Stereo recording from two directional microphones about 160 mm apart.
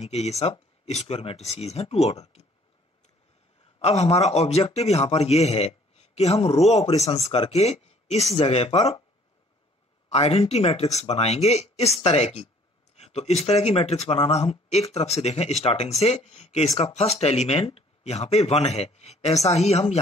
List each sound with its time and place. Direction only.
0.0 s a man's voice: 40° left (ahead or behind)
3.8 s a man's voice: 45° left (ahead or behind)
10.0 s a man's voice: 40° left (ahead or behind)